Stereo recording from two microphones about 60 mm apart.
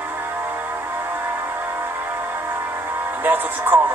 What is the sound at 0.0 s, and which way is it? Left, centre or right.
Music, right.